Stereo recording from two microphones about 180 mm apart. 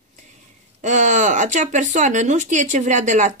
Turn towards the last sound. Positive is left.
turn(degrees=-40)  # may be behind; listen again after turning